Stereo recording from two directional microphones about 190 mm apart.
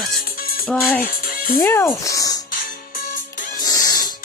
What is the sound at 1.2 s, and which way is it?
Music, 50° left (ahead or behind).